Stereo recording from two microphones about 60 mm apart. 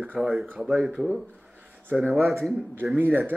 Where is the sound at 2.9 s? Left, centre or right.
Right.